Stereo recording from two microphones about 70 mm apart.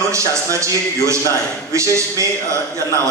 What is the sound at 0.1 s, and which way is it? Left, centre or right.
A man's voice, right.